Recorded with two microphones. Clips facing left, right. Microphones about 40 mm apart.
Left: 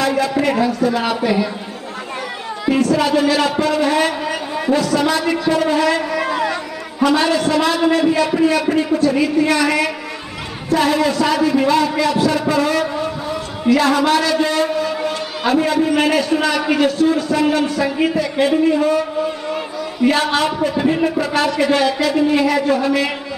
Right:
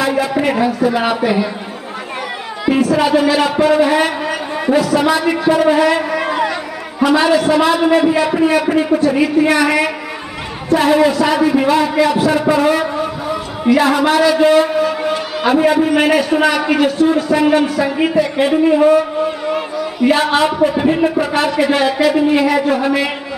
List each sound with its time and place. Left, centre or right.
0.0 s a man's voice: centre
2.7 s a man's voice: centre
17.6 s a man's voice: centre
21.3 s speech: right